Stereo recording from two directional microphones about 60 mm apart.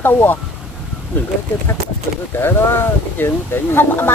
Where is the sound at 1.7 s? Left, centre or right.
Left.